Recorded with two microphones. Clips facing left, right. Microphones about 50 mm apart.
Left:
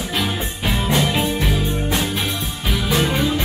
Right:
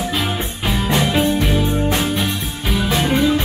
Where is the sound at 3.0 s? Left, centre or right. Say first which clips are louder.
Right 3 dB; centre.